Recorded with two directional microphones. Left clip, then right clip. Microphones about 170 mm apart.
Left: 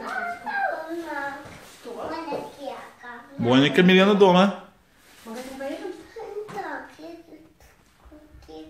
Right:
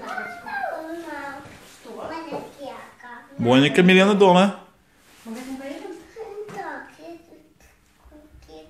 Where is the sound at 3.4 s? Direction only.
20° right (ahead or behind).